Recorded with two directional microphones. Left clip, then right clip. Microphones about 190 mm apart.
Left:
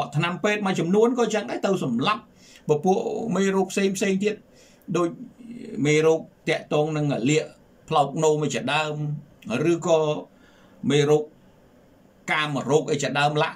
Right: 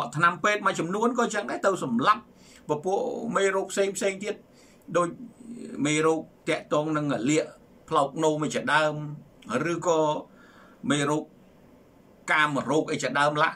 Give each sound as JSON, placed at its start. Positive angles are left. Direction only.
{"t": 0.0, "sound": "a man's voice", "side_deg": 15}
{"t": 5.8, "sound": "a man's voice", "side_deg": 10}
{"t": 12.3, "sound": "a man's voice", "side_deg": 15}